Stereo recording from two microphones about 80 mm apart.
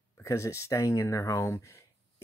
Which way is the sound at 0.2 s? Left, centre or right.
Left.